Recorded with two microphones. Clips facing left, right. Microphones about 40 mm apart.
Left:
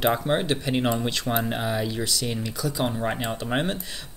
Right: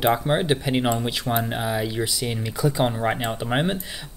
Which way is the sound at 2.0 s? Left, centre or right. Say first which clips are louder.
Right 2 dB; centre.